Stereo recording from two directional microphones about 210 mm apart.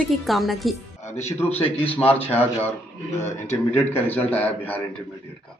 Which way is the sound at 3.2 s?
30° left (ahead or behind).